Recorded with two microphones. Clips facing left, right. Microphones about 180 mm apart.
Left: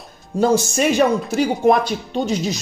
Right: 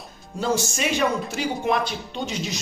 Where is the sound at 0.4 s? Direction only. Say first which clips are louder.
Left 8 dB; 45° left (ahead or behind).